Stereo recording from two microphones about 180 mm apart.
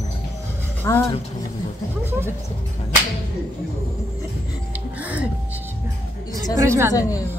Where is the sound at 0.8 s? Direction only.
15° left (ahead or behind).